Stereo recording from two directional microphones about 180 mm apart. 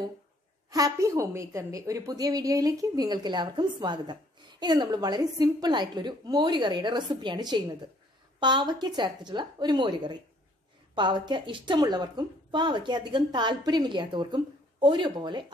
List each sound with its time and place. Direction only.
0.7 s a woman's voice: 20° right (ahead or behind)